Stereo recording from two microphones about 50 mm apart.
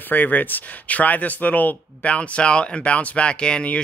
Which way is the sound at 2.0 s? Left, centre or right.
Left.